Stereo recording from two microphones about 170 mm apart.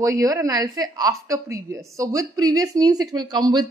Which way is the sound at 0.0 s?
20° right (ahead or behind).